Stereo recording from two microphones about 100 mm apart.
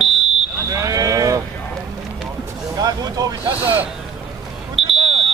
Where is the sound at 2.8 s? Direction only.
40° right (ahead or behind).